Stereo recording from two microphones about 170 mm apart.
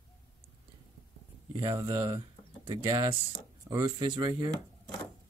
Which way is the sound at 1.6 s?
25° right (ahead or behind).